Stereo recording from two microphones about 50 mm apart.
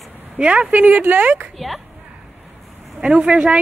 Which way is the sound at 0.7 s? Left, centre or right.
Right.